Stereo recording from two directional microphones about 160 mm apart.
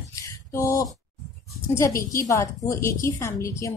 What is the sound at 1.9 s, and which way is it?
Speech, 60° left (ahead or behind).